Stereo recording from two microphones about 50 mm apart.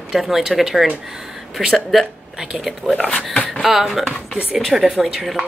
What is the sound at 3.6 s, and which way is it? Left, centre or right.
Speech, centre.